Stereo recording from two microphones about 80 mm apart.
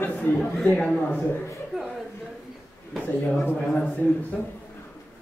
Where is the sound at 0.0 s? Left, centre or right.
Centre.